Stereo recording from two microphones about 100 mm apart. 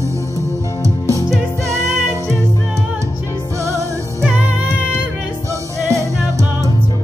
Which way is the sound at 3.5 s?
30° right (ahead or behind).